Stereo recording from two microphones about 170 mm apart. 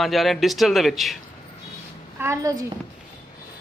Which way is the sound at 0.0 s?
Centre (ahead or behind).